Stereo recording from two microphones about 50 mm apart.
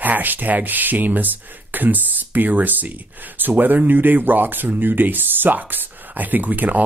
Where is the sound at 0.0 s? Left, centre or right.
Right.